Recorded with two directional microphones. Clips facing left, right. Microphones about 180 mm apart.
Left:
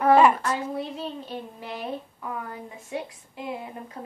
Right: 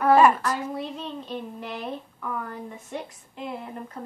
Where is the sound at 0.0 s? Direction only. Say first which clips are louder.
Even; 20° left (ahead or behind).